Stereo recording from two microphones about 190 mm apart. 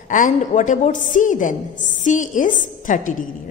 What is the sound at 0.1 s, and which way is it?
A woman's voice, 40° left (ahead or behind).